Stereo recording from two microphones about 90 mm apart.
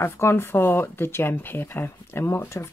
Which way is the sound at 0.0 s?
30° left (ahead or behind).